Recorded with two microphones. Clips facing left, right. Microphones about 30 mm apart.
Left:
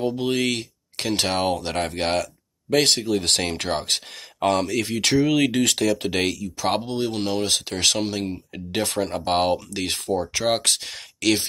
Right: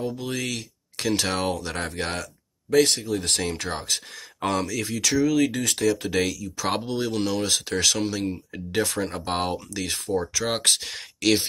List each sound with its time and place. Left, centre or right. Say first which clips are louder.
0.0 s speech: left 6 dB; left
0.9 s speech: left 2 dB; left
1.6 s speech: left 4 dB; left
2.7 s speech: left 1 dB; left
6.0 s speech: left 1 dB; left
6.6 s speech: left 2 dB; centre
8.7 s speech: left 1 dB; left
10.6 s speech: right 1 dB; centre